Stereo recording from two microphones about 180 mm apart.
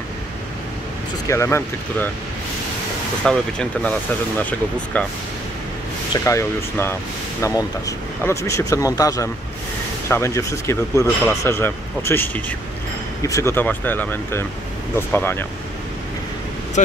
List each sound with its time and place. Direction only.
1.3 s speech: 15° left (ahead or behind)
3.3 s speech: 5° left (ahead or behind)
6.2 s speech: 15° left (ahead or behind)
16.8 s speech: 45° left (ahead or behind)